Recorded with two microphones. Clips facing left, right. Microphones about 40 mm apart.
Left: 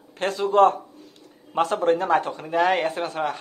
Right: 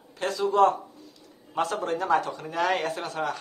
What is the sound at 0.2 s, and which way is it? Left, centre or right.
A man's voice, left.